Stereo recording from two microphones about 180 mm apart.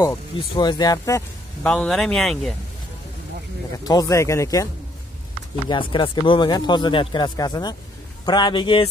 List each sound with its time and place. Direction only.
0.4 s speech: 25° left (ahead or behind)
1.6 s speech: 5° left (ahead or behind)
3.7 s speech: 20° left (ahead or behind)
5.7 s speech: 25° left (ahead or behind)